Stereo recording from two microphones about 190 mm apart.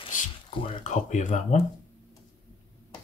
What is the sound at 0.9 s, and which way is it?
Speech, 40° left (ahead or behind).